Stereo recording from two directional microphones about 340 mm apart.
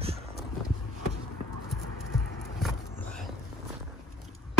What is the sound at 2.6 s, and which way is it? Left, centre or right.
Vehicle, centre.